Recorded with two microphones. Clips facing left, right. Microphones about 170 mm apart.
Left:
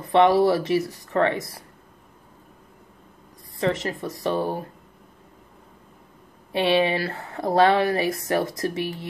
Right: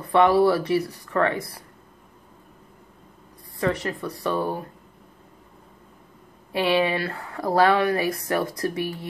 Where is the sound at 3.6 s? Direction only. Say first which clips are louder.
Left 1 dB; 25° left (ahead or behind).